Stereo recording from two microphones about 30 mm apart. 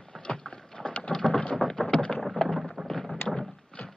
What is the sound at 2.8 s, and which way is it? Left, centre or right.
Thunder, centre.